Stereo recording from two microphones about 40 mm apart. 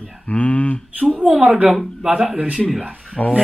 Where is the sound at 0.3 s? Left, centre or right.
Left.